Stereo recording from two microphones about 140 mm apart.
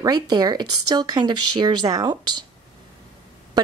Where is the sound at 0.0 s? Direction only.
30° right (ahead or behind).